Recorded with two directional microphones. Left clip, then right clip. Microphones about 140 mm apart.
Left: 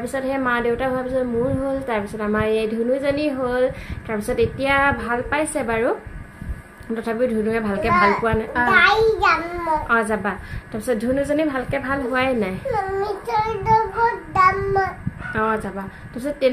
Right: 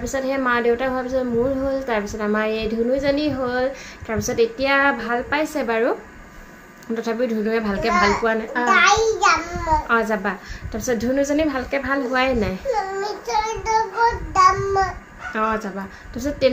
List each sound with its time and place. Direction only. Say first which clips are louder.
0.0 s a child's voice: right 1 dB; 5° left (ahead or behind)
8.6 s a child's voice: even; 30° left (ahead or behind)
9.8 s speech: even; 5° left (ahead or behind)
12.7 s child singing: left 1 dB; 30° left (ahead or behind)
15.3 s speech: even; 5° left (ahead or behind)